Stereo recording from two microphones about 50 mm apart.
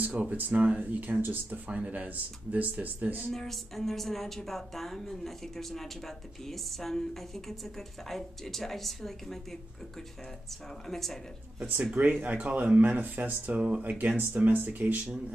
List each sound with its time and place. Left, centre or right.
0.0 s speech: right
0.8 s speech: right
3.3 s a woman's voice: centre
10.9 s a woman's voice: centre
11.9 s speech: right